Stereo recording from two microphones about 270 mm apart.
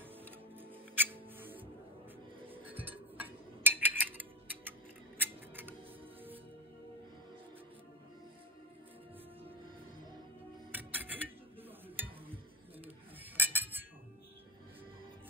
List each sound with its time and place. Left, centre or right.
0.2 s music: centre
2.5 s a sound: centre
5.2 s scissors: centre
10.7 s music: centre
13.4 s cutlery: centre